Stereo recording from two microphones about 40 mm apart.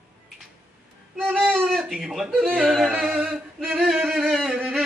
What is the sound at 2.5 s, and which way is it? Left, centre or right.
Yodeling, centre.